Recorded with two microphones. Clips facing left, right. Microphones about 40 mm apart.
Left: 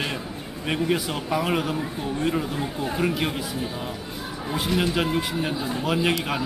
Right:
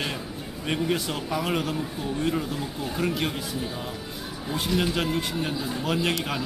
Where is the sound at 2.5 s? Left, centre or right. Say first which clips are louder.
Left 3 dB; left.